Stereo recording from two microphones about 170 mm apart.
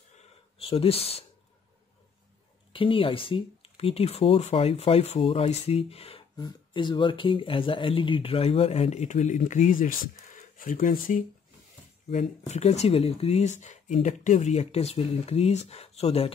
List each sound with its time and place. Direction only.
0.6 s speech: 35° left (ahead or behind)
2.7 s speech: 30° left (ahead or behind)
6.3 s speech: 25° left (ahead or behind); by 11.2 s 55° left (ahead or behind)
12.1 s speech: 40° left (ahead or behind)